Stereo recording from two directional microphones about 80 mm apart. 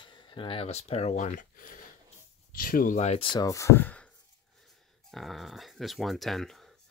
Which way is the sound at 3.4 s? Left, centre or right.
Left.